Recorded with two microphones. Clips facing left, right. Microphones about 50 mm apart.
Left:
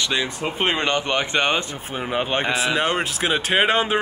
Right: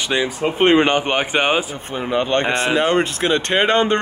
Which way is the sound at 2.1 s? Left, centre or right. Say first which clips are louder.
Right 5 dB; centre.